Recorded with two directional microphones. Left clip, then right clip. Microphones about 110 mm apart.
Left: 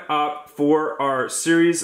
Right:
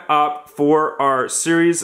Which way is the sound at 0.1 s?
40° right (ahead or behind).